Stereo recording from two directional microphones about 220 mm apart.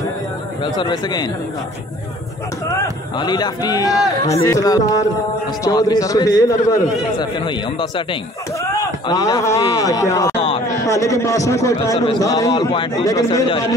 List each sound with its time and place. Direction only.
0.7 s a man's voice: 20° left (ahead or behind)
3.2 s a man's voice: 20° left (ahead or behind)
10.3 s a sound: 25° left (ahead or behind)
10.8 s a man's voice: 15° left (ahead or behind)